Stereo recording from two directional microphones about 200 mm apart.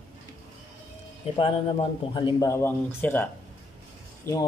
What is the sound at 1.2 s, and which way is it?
Speech, 30° left (ahead or behind).